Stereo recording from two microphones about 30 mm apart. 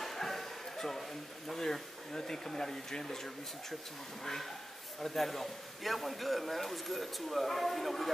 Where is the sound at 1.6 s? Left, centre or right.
Centre.